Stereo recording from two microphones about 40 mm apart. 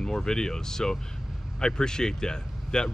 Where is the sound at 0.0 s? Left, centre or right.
Centre.